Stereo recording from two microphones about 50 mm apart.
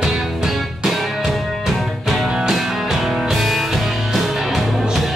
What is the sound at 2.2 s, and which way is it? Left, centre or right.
Music, centre.